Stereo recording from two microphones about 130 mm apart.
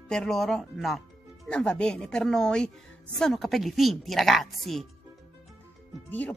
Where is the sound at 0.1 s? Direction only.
5° left (ahead or behind).